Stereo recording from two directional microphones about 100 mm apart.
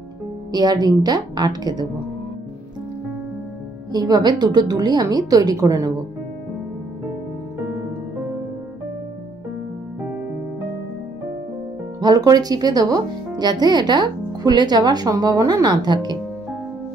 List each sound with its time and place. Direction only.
0.5 s a woman's voice: 40° right (ahead or behind)
3.9 s a woman's voice: 40° right (ahead or behind)
12.0 s speech: 40° right (ahead or behind)